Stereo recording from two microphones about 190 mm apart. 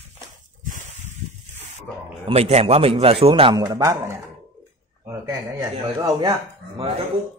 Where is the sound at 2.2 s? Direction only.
35° right (ahead or behind).